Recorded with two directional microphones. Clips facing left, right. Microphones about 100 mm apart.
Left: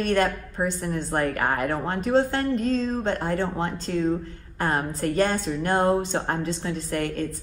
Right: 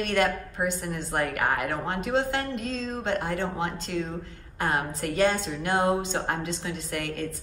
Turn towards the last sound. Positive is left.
turn(degrees=40)  # may be behind; listen again after turning